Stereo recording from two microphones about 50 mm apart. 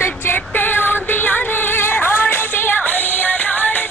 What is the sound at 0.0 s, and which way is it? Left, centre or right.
Music, left.